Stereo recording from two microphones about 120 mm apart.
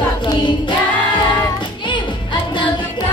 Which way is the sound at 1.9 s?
40° left (ahead or behind).